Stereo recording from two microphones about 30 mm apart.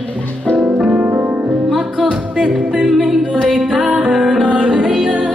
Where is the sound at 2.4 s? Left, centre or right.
Right.